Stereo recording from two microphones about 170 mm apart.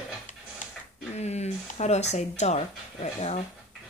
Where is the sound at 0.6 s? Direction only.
50° left (ahead or behind).